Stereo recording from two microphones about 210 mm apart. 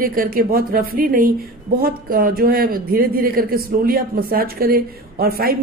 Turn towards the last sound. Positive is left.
turn(degrees=-45)  # may be behind; listen again after turning